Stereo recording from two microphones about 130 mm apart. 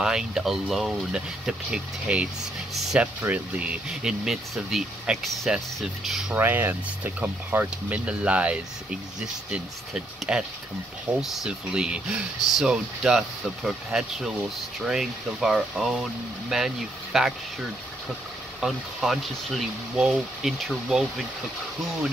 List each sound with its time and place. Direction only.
0.0 s speech: 5° right (ahead or behind)
6.3 s speech: 15° right (ahead or behind)
18.6 s speech: centre (ahead or behind)